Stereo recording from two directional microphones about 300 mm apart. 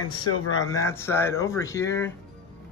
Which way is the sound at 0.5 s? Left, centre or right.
Centre.